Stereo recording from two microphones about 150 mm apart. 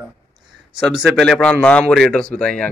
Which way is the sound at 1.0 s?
Centre (ahead or behind).